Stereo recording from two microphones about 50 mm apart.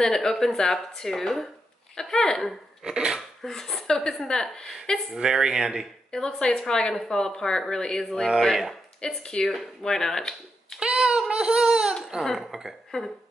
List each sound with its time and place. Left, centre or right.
0.0 s speech: centre
2.8 s a sound: centre
3.2 s speech: centre
5.1 s a sound: centre
6.1 s speech: centre
9.0 s speech: centre
10.8 s a sound: centre
12.3 s speech: centre
12.9 s speech: centre